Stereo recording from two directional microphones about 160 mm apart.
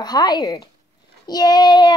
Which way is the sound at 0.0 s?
25° left (ahead or behind).